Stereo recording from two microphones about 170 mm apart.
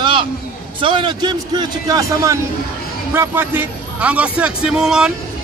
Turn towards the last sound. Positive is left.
turn(degrees=-5)  # may be behind; listen again after turning